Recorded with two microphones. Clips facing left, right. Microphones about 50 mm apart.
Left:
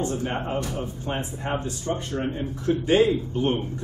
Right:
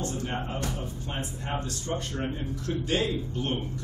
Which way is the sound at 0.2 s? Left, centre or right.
Left.